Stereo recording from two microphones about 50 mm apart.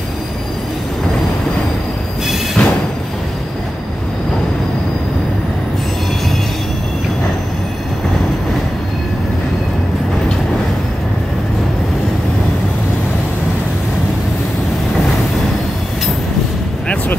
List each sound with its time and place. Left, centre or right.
2.6 s music: centre